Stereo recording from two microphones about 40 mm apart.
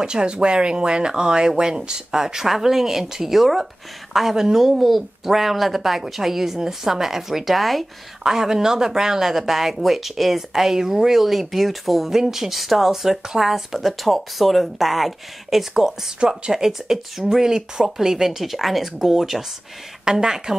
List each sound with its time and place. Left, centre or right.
0.0 s speech: right; by 7.8 s centre
8.2 s speech: centre
15.8 s speech: centre